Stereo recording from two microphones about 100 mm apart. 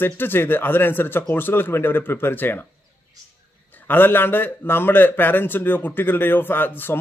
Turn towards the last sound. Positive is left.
turn(degrees=20)  # may be behind; listen again after turning